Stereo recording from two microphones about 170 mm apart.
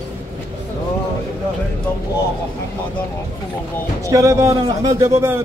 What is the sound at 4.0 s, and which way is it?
Speech, 20° right (ahead or behind).